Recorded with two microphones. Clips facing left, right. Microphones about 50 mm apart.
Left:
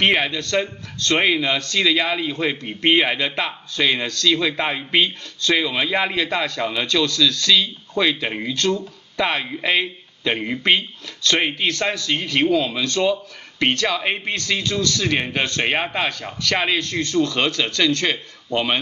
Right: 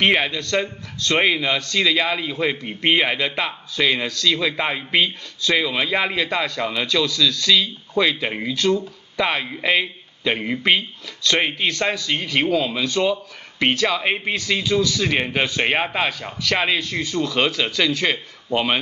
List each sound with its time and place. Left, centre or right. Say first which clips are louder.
0.0 s a man's voice: even; centre